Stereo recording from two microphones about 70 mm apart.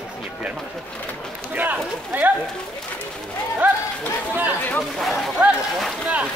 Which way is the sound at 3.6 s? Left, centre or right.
Right.